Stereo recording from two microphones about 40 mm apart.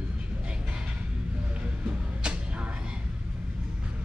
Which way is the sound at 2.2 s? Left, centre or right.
Right.